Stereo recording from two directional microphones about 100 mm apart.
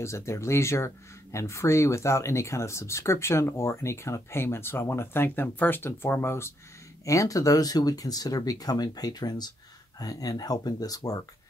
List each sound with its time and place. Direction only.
0.0 s speech: 30° left (ahead or behind)